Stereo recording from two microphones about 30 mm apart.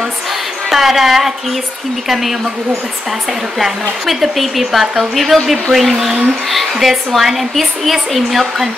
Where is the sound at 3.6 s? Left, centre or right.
Centre.